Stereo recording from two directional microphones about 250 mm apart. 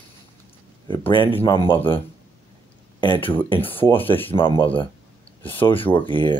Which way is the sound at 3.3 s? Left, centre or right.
Centre.